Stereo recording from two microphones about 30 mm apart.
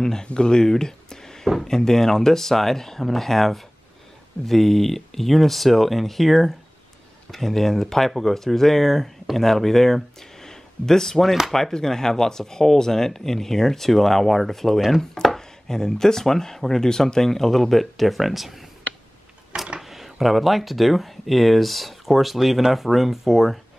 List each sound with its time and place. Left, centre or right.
0.0 s speech: left
0.7 s a sound: centre
1.6 s speech: centre
19.8 s speech: centre